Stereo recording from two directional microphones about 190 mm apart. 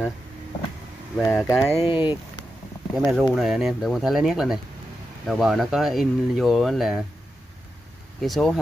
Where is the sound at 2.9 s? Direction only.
5° right (ahead or behind).